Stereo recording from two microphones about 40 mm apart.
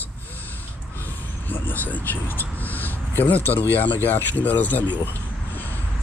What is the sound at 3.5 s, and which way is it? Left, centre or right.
Speech, left.